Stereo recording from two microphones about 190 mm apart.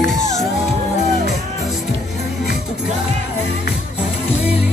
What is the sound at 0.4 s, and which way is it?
Music, centre (ahead or behind).